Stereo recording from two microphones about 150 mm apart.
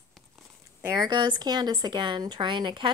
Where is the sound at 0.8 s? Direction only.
25° right (ahead or behind).